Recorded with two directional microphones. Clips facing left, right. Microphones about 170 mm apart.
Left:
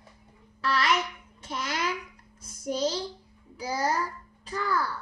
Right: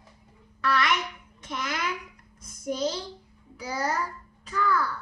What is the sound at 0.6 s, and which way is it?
A child's voice, 30° left (ahead or behind).